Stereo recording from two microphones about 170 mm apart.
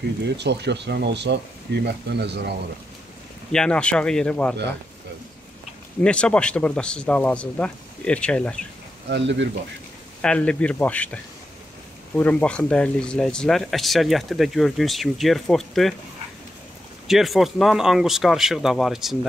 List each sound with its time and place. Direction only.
0.4 s speech: 85° right
3.5 s speech: 5° left (ahead or behind)
5.9 s speech: 5° left (ahead or behind)
9.1 s speech: 90° right
10.2 s speech: 5° left (ahead or behind)
12.2 s speech: 10° left (ahead or behind)
17.1 s speech: centre (ahead or behind)